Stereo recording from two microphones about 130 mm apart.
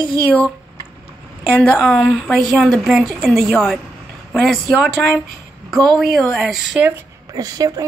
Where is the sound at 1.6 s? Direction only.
5° left (ahead or behind).